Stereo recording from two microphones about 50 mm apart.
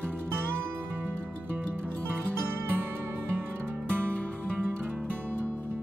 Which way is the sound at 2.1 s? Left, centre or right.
Right.